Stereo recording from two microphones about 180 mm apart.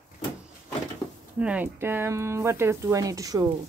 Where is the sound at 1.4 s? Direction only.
10° right (ahead or behind).